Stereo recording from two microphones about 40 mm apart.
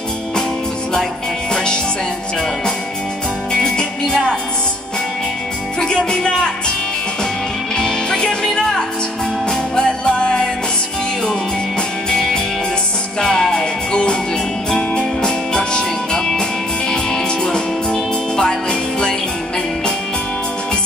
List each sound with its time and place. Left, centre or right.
1.5 s music: left
3.5 s music: centre
5.8 s music: centre
7.7 s music: centre
9.5 s music: centre
12.1 s music: centre